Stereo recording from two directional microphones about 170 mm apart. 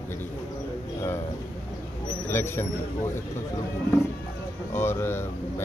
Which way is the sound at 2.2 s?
15° left (ahead or behind).